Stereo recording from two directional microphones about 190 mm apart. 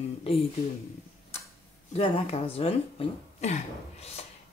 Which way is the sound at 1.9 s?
30° left (ahead or behind).